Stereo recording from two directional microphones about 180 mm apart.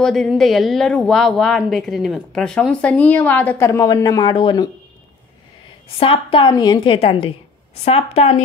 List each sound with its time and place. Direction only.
0.0 s speech: centre (ahead or behind); by 4.6 s 25° left (ahead or behind)
5.9 s a woman's voice: 30° left (ahead or behind)